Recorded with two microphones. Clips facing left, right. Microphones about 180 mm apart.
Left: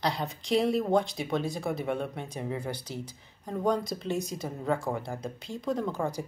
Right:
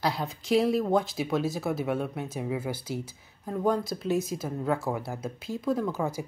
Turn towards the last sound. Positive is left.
turn(degrees=-5)  # may be behind; listen again after turning